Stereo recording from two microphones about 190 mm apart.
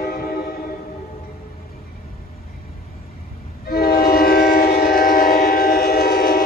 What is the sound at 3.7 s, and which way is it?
Train, 55° left (ahead or behind).